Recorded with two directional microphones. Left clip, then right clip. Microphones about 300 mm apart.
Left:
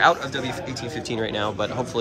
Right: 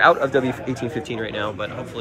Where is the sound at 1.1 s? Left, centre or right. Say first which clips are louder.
Left 5 dB; centre.